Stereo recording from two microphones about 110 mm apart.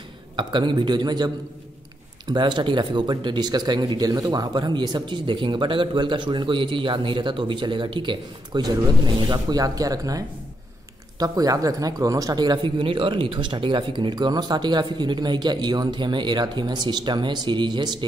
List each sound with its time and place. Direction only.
0.4 s speech: 45° right (ahead or behind)